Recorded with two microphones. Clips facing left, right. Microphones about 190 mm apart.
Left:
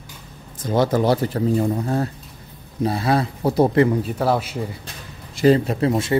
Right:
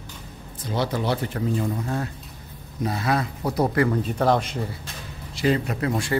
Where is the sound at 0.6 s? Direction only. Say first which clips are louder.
Left 7 dB; 45° left (ahead or behind); by 3.9 s 25° left (ahead or behind).